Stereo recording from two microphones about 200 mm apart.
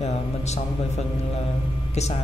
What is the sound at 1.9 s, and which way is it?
Speech, 35° left (ahead or behind).